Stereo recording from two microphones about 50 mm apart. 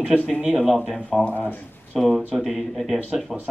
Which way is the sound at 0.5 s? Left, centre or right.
Centre.